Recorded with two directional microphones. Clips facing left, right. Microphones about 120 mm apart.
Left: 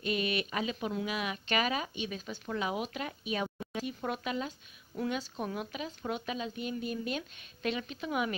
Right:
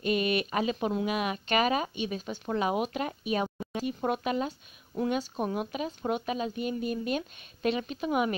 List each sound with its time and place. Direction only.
0.0 s speech: 50° right (ahead or behind)